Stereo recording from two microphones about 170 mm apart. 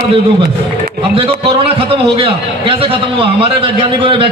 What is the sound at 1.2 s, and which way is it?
A man's voice, 30° right (ahead or behind).